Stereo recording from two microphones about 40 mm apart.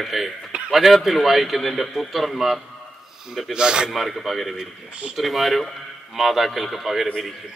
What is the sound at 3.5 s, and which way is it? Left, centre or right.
Speech, centre.